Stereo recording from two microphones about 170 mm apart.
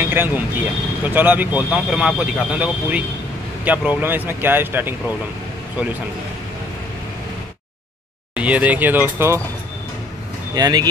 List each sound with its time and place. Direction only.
0.0 s speech: 10° right (ahead or behind)
8.4 s speech: 10° right (ahead or behind)
10.5 s speech: 25° right (ahead or behind)